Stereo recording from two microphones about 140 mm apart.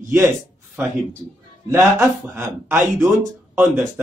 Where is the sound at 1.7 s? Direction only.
15° right (ahead or behind).